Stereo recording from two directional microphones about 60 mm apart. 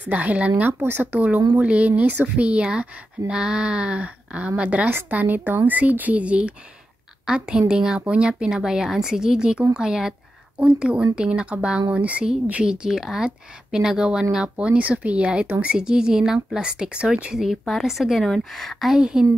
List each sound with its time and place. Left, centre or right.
0.1 s a woman's voice: right; by 10.1 s centre
10.6 s a woman's voice: right
12.6 s speech: centre
17.4 s a woman's voice: centre
18.2 s a woman's voice: centre
18.9 s speech: centre